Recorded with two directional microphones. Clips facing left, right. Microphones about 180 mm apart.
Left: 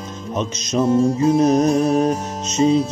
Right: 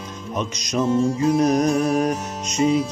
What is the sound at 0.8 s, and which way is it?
Music, 40° left (ahead or behind).